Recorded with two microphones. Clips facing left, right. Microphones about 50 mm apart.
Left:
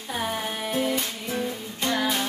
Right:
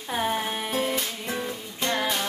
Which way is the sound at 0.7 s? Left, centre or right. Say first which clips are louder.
Left 2 dB; centre.